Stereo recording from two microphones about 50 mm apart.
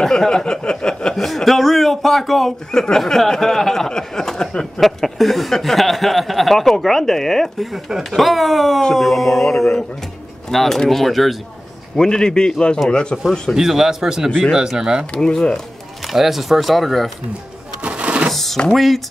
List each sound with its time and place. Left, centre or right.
0.0 s a man's voice: centre
1.2 s a man's voice: centre
4.8 s speech: centre
7.7 s speech: centre
12.0 s a man's voice: centre
13.5 s a man's voice: centre
15.1 s a man's voice: centre
16.1 s speech: centre
17.8 s printer: right
18.3 s a sound: centre
18.7 s speech: centre